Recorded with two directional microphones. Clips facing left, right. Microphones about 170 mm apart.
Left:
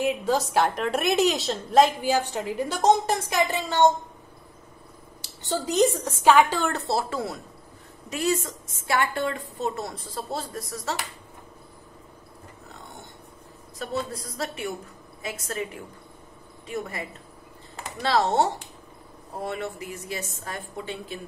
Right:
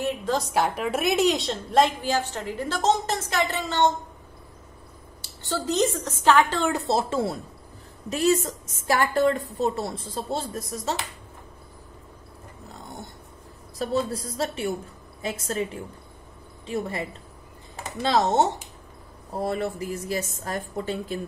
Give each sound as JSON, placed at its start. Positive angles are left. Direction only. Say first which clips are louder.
{"t": 0.0, "sound": "a woman's voice", "louder": "left 2 dB", "side_deg": 10}
{"t": 2.0, "sound": "a woman's voice", "louder": "left 2 dB", "side_deg": 15}
{"t": 5.5, "sound": "a woman's voice", "louder": "left 2 dB", "side_deg": 15}
{"t": 6.7, "sound": "a woman's voice", "louder": "right 3 dB", "side_deg": -15}
{"t": 8.8, "sound": "a woman's voice", "louder": "right 4 dB", "side_deg": -40}
{"t": 13.7, "sound": "a woman's voice", "louder": "right 5 dB", "side_deg": -30}
{"t": 18.0, "sound": "a woman's voice", "louder": "right 1 dB", "side_deg": -20}
{"t": 19.3, "sound": "a woman's voice", "louder": "right 4 dB", "side_deg": -35}